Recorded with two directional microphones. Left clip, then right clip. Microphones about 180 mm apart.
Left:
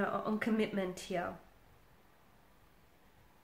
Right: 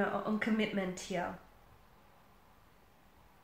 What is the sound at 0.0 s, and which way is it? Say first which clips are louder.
A woman's voice: right 1 dB; 40° left (ahead or behind).